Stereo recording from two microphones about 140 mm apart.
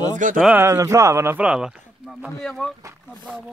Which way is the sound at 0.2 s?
65° right (ahead or behind).